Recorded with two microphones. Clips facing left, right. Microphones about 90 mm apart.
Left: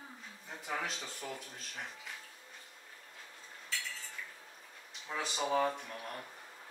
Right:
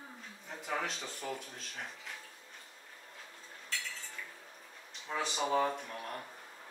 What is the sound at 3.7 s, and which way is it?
Cutlery, centre (ahead or behind).